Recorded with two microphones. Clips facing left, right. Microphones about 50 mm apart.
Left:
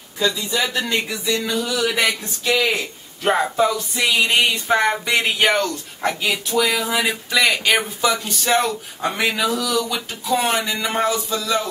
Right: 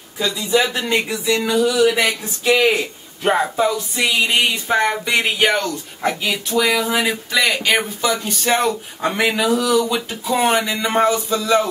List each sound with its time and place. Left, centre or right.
0.7 s speech: centre
1.0 s speech: right
1.6 s speech: centre
2.7 s speech: centre